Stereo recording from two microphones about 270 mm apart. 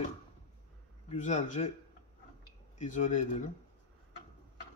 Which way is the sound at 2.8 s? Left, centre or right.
Left.